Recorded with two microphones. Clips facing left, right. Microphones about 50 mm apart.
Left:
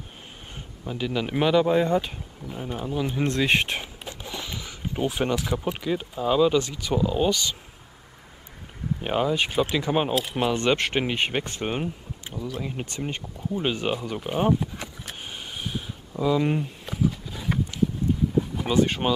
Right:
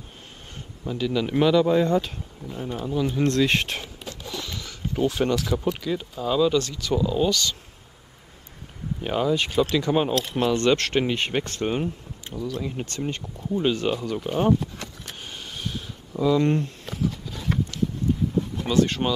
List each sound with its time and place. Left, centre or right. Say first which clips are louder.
0.8 s speech: right 3 dB; centre
9.0 s speech: right 1 dB; centre
13.6 s a sound: right 3 dB; centre